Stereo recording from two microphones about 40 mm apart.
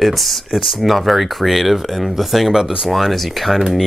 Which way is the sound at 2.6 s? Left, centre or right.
Centre.